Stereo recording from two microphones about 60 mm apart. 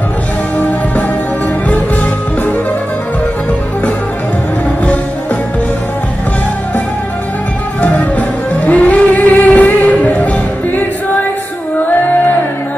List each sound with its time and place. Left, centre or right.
7.8 s music: left